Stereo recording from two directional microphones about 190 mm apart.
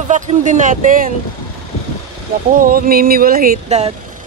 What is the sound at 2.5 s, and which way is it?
Music, 50° right (ahead or behind).